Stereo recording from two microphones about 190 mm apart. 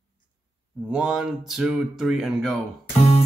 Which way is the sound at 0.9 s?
5° right (ahead or behind).